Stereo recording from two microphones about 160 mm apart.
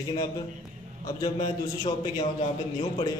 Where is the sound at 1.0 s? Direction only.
25° left (ahead or behind).